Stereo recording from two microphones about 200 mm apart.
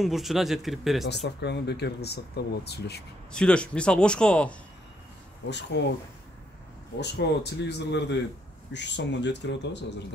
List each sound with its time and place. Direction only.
0.0 s a man's voice: centre (ahead or behind)
1.0 s speech: 55° left (ahead or behind)
3.3 s a man's voice: 5° left (ahead or behind)
5.5 s speech: 60° left (ahead or behind)
7.0 s speech: 55° left (ahead or behind)